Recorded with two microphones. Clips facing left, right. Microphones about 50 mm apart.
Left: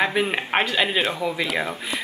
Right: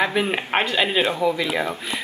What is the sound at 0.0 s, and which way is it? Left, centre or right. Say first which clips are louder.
Speech: right 1 dB; centre.